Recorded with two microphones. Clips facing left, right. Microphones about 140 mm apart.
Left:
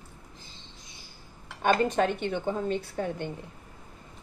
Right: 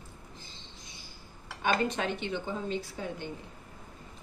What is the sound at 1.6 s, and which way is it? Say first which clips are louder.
Speech: left 5 dB; 45° left (ahead or behind).